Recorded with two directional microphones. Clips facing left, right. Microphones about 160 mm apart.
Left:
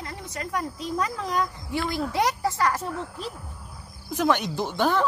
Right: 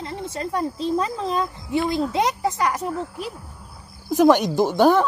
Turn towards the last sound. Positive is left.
turn(degrees=-45)  # may be behind; listen again after turning